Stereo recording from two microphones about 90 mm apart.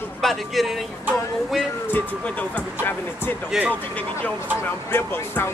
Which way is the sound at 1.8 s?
20° left (ahead or behind).